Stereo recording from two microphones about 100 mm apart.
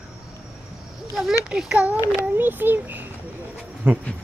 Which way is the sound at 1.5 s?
5° right (ahead or behind).